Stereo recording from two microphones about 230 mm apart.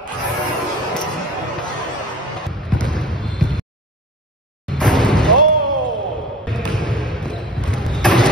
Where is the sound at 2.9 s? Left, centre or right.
Centre.